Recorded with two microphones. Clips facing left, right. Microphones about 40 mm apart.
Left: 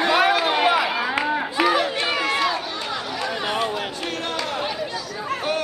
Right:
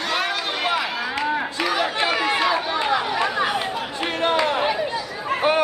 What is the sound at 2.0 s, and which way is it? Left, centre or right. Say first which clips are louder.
Run: right 1 dB; right.